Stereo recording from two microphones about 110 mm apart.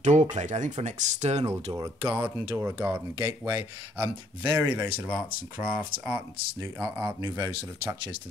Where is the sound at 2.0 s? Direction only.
20° right (ahead or behind).